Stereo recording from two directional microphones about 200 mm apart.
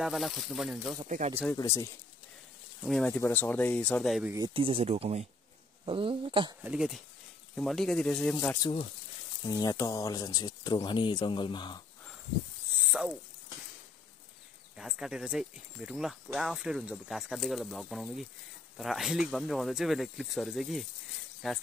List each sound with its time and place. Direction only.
0.0 s speech: centre (ahead or behind)
1.0 s speech: 40° right (ahead or behind)
2.8 s speech: 5° left (ahead or behind)
4.6 s speech: 30° right (ahead or behind)
6.6 s speech: 5° right (ahead or behind)
9.5 s speech: 15° left (ahead or behind)
12.8 s cricket: centre (ahead or behind)
14.8 s speech: centre (ahead or behind)